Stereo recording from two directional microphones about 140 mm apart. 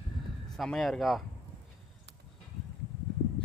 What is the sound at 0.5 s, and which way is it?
Speech, centre (ahead or behind).